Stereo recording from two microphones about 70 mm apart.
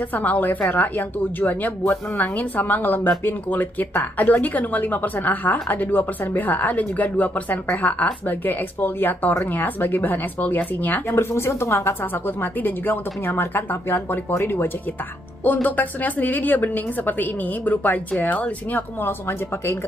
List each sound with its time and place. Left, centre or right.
0.1 s speech: left
11.1 s speech: left
12.4 s speech: left
15.4 s speech: left